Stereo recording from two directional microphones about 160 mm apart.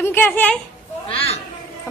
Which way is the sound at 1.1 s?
35° left (ahead or behind).